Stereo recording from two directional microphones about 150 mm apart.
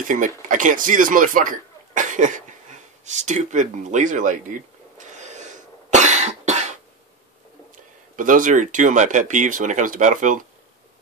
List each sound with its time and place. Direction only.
0.0 s speech: 60° right (ahead or behind)
0.5 s cough: 60° right (ahead or behind)
7.7 s speech: 60° right (ahead or behind)